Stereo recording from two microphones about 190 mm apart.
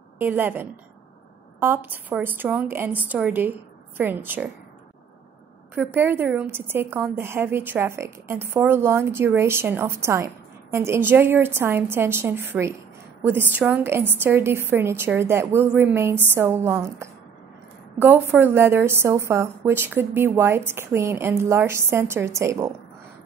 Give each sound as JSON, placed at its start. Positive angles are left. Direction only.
{"t": 0.2, "sound": "a woman's voice", "side_deg": -10}
{"t": 5.8, "sound": "a woman's voice", "side_deg": -10}